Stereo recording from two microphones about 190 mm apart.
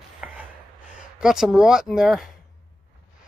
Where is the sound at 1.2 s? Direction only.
5° right (ahead or behind).